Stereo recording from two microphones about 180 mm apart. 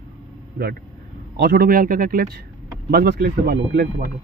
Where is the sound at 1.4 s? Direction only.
60° right (ahead or behind).